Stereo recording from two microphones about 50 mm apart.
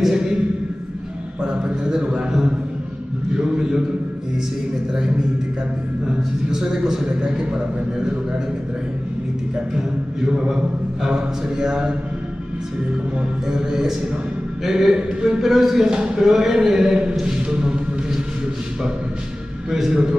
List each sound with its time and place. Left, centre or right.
0.0 s a sound: centre
1.6 s a man's voice: centre
4.9 s a man's voice: centre
9.8 s a man's voice: centre
13.5 s a man's voice: centre
15.8 s a man's voice: centre
19.7 s a man's voice: centre